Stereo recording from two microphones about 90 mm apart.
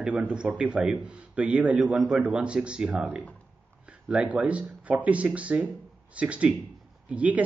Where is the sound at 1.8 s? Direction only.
Centre (ahead or behind).